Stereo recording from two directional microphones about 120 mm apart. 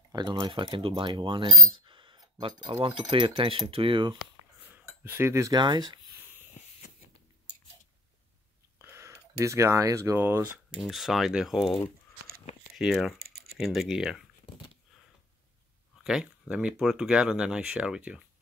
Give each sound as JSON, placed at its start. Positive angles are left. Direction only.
{"t": 0.1, "sound": "speech", "side_deg": -40}
{"t": 1.7, "sound": "a sound", "side_deg": -45}
{"t": 2.4, "sound": "speech", "side_deg": -40}
{"t": 5.0, "sound": "speech", "side_deg": -20}
{"t": 8.7, "sound": "a sound", "side_deg": -20}
{"t": 9.4, "sound": "speech", "side_deg": -25}
{"t": 10.1, "sound": "speech", "side_deg": -15}
{"t": 10.8, "sound": "speech", "side_deg": 0}
{"t": 16.0, "sound": "speech", "side_deg": -5}